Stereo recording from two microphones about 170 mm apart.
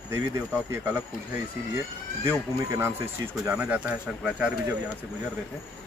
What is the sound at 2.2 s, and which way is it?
Speech, 15° right (ahead or behind).